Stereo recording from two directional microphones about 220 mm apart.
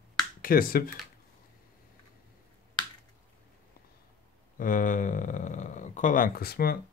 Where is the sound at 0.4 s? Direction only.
40° left (ahead or behind).